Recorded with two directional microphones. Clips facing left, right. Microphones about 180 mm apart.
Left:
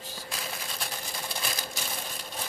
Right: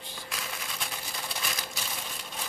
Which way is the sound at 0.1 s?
35° left (ahead or behind).